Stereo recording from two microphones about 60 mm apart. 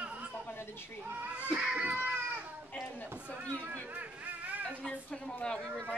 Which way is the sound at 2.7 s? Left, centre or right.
Left.